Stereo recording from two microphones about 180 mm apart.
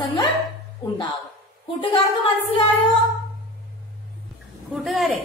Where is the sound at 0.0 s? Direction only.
30° left (ahead or behind).